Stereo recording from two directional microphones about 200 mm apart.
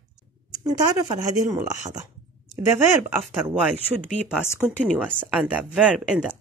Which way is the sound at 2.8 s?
10° right (ahead or behind).